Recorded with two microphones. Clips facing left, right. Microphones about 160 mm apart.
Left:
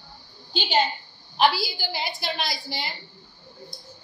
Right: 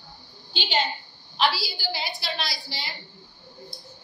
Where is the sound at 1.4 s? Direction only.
50° left (ahead or behind).